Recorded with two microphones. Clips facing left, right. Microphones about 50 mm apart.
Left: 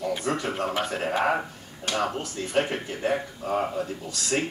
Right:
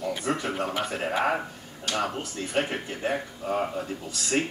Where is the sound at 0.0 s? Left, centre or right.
Centre.